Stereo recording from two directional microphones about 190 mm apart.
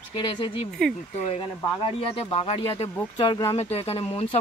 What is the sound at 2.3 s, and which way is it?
Speech, 30° left (ahead or behind).